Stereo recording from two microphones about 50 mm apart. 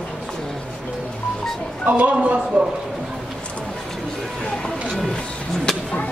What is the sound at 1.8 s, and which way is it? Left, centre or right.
Speech, right.